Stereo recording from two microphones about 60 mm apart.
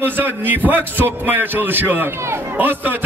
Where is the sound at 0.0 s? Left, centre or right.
Right.